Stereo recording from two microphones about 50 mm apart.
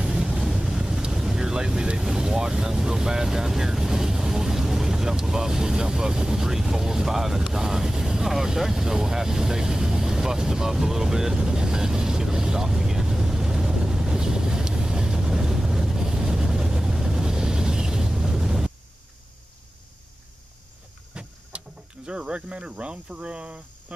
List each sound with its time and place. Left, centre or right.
0.2 s vehicle: centre
21.1 s vehicle: right